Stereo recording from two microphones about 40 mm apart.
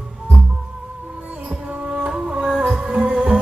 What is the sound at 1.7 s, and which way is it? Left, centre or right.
Music, right.